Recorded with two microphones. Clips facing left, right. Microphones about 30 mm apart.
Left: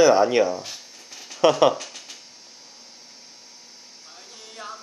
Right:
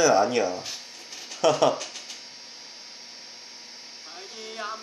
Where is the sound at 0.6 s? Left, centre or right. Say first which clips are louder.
Right 1 dB; centre.